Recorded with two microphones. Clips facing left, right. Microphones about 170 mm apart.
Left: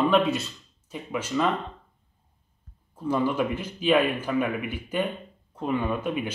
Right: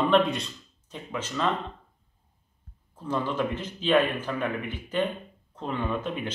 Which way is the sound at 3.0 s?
10° left (ahead or behind).